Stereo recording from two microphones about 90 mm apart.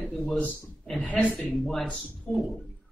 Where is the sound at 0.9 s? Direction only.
15° left (ahead or behind).